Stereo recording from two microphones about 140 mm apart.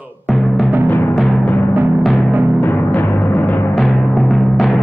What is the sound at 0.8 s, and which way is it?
Music, 15° left (ahead or behind).